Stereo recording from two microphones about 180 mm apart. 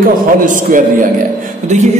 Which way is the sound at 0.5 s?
45° right (ahead or behind).